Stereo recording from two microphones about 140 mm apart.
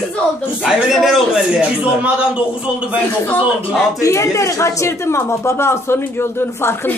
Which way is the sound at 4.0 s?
20° left (ahead or behind).